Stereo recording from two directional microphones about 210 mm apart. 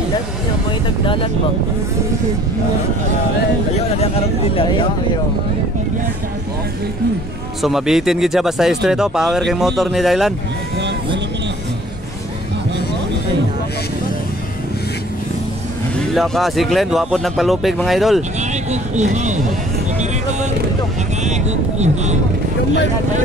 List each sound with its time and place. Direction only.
0.7 s vehicle: 25° left (ahead or behind)
4.6 s speech: 20° left (ahead or behind)
7.6 s speech: centre (ahead or behind)
16.1 s speech: centre (ahead or behind)
18.7 s speech: 35° right (ahead or behind)
21.2 s speech: 35° right (ahead or behind)